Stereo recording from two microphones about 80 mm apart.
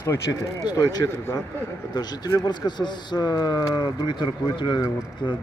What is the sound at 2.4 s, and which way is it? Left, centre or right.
Speech, left.